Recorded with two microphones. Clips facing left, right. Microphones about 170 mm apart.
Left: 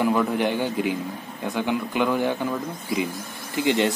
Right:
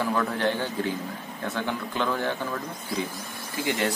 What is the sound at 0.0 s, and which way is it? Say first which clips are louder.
Speech: left 4 dB; 15° left (ahead or behind).